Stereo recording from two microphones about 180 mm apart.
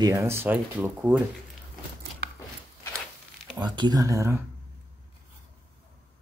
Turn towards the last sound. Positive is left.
turn(degrees=-15)  # may be behind; listen again after turning